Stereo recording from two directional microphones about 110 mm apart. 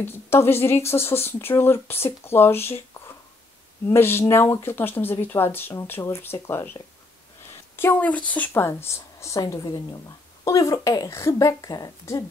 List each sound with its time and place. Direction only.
0.0 s speech: 20° left (ahead or behind)
3.9 s speech: 20° left (ahead or behind)